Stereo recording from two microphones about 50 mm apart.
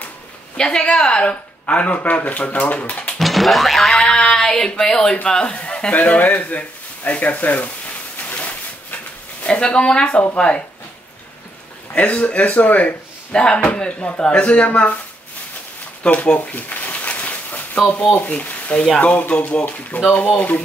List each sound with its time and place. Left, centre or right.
0.6 s a man's voice: centre
3.2 s music: centre
4.8 s a man's voice: centre; by 7.7 s left
8.3 s a sound: left
9.4 s a man's voice: left
11.9 s a man's voice: left
16.0 s a sound: left
17.8 s a man's voice: left